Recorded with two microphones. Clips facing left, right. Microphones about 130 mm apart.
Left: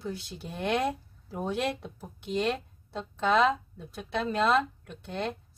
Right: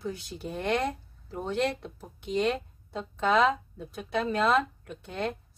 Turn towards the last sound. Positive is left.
turn(degrees=0)  # may be behind; listen again after turning